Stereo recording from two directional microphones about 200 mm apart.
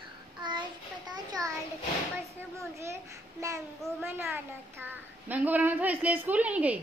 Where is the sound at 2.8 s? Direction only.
15° right (ahead or behind).